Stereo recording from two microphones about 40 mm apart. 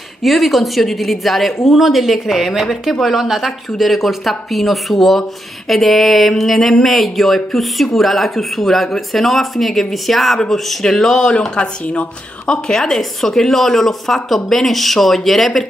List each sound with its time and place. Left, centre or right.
0.2 s a woman's voice: centre; by 12.1 s left
12.4 s a woman's voice: centre